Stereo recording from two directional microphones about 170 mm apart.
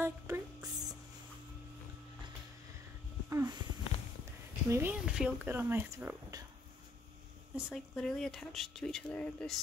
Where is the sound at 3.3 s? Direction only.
20° right (ahead or behind).